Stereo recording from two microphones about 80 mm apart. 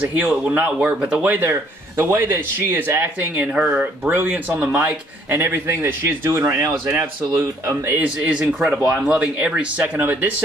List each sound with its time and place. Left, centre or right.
0.2 s speech: centre
1.2 s speech: right; by 4.1 s centre
4.1 s speech: right
5.4 s speech: right
8.0 s speech: centre